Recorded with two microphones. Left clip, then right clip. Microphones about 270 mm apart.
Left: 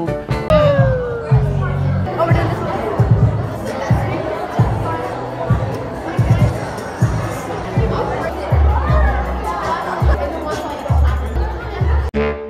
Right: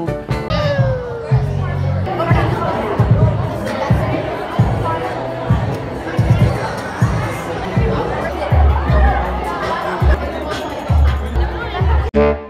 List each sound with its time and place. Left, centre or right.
0.5 s music: centre
12.2 s music: centre